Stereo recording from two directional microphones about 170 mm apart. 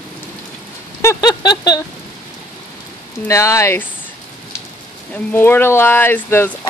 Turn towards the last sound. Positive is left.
turn(degrees=15)  # may be behind; listen again after turning